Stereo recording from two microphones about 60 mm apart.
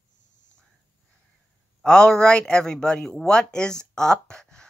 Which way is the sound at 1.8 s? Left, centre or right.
Centre.